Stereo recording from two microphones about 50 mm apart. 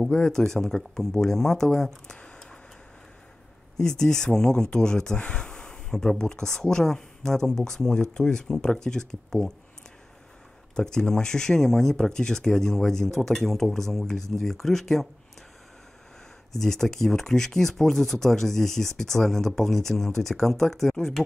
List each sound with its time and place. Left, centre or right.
0.1 s speech: centre
2.1 s a sound: centre
3.7 s speech: centre
10.8 s speech: centre
16.5 s speech: centre